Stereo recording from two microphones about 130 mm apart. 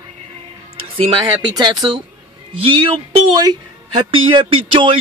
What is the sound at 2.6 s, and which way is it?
Speech, 45° right (ahead or behind).